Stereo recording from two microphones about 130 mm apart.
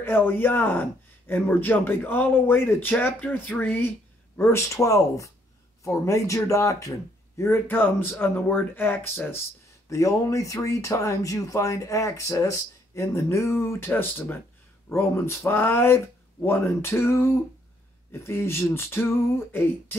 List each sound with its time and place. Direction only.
0.0 s speech: 15° left (ahead or behind)